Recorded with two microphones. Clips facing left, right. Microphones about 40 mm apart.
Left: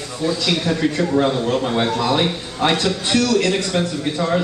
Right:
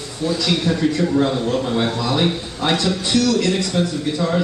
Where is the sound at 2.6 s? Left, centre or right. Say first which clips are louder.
Left 1 dB; left.